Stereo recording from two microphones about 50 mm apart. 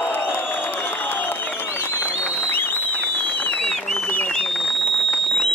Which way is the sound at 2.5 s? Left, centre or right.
Left.